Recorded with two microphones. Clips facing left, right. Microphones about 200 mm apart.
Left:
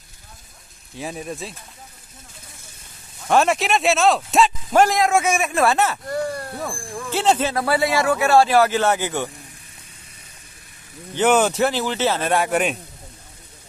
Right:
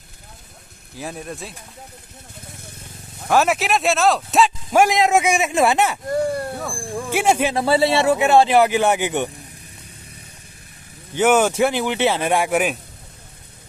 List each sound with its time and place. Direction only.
0.9 s speech: centre (ahead or behind)
3.3 s speech: centre (ahead or behind)
4.8 s speech: 20° right (ahead or behind)
7.5 s speech: 25° right (ahead or behind)
11.1 s speech: 10° right (ahead or behind)